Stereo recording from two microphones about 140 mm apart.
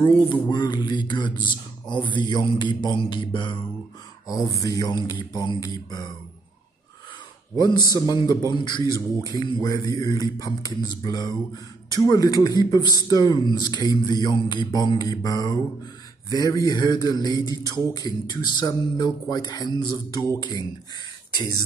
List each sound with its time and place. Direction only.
0.3 s a man's voice: 35° left (ahead or behind)
4.4 s speech: 25° left (ahead or behind)
7.5 s a man's voice: 30° left (ahead or behind)